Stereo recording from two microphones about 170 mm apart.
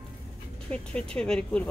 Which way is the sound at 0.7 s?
5° left (ahead or behind).